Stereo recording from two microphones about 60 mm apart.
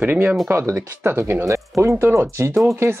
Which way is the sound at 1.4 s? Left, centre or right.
Right.